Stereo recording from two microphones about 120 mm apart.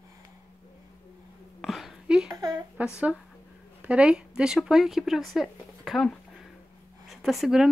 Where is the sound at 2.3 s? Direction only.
35° right (ahead or behind).